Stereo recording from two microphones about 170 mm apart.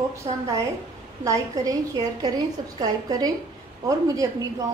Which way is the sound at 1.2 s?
20° right (ahead or behind).